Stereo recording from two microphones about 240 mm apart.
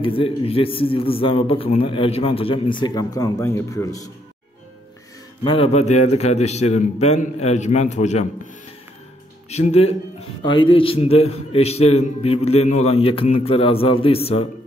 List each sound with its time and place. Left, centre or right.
0.0 s a man's voice: left
5.4 s a man's voice: left
9.5 s a man's voice: left